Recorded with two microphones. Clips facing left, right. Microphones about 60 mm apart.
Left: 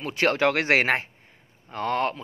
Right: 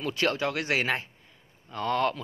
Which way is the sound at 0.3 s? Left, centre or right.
Left.